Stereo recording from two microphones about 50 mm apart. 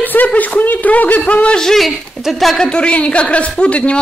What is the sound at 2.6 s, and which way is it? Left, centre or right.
A man's voice, left.